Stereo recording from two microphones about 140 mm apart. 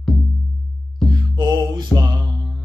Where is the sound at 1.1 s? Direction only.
30° right (ahead or behind).